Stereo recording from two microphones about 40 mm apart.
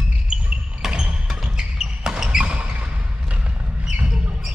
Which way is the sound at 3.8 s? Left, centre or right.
Right.